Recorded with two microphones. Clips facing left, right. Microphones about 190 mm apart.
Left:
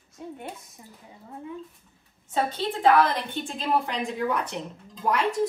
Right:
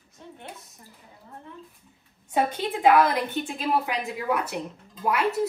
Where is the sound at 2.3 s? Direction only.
10° right (ahead or behind).